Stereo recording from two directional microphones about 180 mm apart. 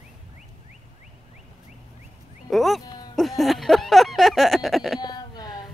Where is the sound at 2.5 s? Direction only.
Centre (ahead or behind).